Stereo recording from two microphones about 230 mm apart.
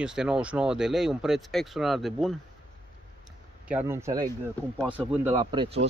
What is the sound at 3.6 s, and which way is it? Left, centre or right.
Speech, centre.